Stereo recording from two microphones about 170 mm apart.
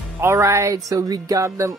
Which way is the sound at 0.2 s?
15° right (ahead or behind).